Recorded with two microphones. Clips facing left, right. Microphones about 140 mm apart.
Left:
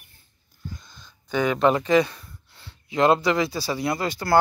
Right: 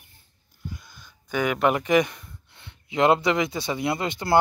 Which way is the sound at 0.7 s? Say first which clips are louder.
Even; 10° right (ahead or behind).